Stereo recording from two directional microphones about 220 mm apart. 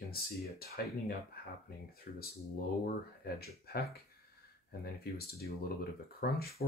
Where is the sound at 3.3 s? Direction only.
45° left (ahead or behind).